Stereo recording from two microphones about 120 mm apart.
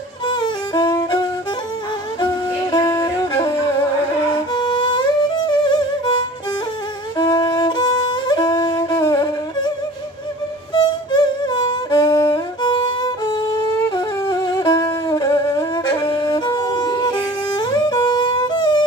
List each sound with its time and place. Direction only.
0.3 s violin: 35° left (ahead or behind)
2.7 s music: 30° left (ahead or behind)
4.6 s music: 40° left (ahead or behind)
10.7 s music: 40° left (ahead or behind)
15.0 s wind instrument: 30° left (ahead or behind)
16.3 s music: 35° left (ahead or behind)